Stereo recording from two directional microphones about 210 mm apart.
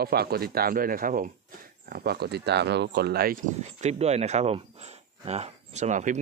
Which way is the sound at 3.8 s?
30° right (ahead or behind).